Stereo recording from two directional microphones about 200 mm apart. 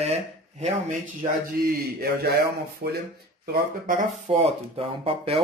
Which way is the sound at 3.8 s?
35° right (ahead or behind).